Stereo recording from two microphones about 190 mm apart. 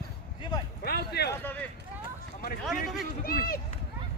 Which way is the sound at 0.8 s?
60° left (ahead or behind).